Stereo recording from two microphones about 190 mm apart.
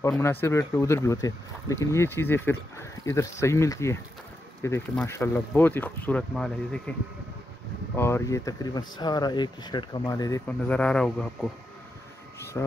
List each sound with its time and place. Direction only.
0.1 s speech: 10° left (ahead or behind)
7.9 s speech: 15° left (ahead or behind)
10.7 s speech: 5° left (ahead or behind)
12.6 s speech: 10° left (ahead or behind)